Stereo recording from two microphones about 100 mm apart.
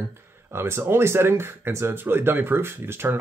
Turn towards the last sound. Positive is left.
turn(degrees=-25)  # may be behind; listen again after turning